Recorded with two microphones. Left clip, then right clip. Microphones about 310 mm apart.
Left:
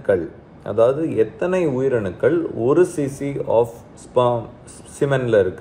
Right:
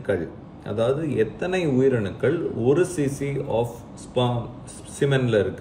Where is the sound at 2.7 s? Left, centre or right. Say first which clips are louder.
Left 6 dB; centre.